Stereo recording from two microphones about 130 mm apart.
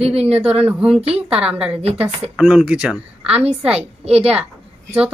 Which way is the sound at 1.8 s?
50° right (ahead or behind).